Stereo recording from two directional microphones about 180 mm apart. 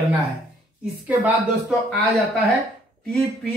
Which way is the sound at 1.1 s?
10° right (ahead or behind).